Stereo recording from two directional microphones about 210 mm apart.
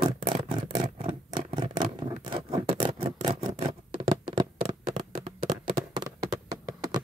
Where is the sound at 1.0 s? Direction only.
20° right (ahead or behind).